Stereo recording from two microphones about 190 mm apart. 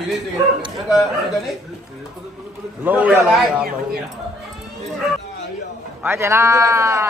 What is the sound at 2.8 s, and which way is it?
Speech, 10° right (ahead or behind).